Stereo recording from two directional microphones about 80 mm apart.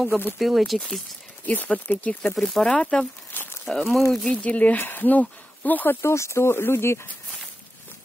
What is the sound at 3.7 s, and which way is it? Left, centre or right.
Speech, centre.